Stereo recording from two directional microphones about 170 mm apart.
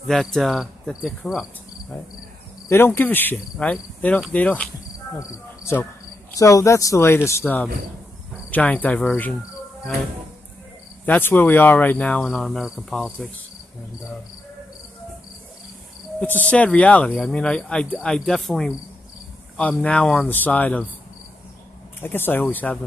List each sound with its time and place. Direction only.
0.1 s cricket: centre (ahead or behind)
2.7 s cricket: 10° left (ahead or behind)
11.1 s cricket: 10° left (ahead or behind)
16.2 s cricket: 10° left (ahead or behind)
22.0 s cricket: 10° left (ahead or behind)